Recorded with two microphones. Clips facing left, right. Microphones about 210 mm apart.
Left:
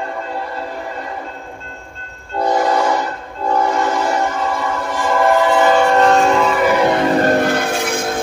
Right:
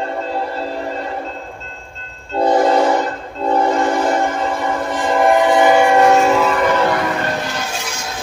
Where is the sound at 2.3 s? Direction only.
25° right (ahead or behind).